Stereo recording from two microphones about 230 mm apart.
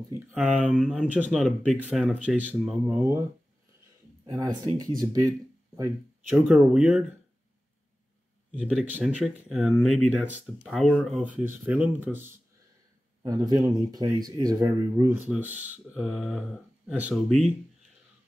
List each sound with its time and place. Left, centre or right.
0.3 s speech: centre
4.3 s speech: centre
6.3 s speech: centre
8.5 s speech: centre